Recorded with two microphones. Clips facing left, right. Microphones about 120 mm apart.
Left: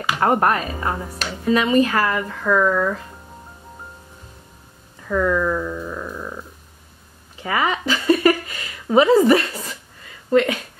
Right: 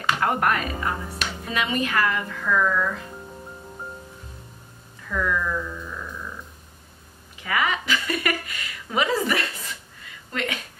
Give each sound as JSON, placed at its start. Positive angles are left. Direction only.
{"t": 0.2, "sound": "speech", "side_deg": 35}
{"t": 5.0, "sound": "speech", "side_deg": 35}
{"t": 7.3, "sound": "a woman's voice", "side_deg": 30}